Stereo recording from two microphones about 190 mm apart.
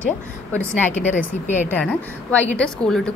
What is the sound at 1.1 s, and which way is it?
Speech, 40° left (ahead or behind).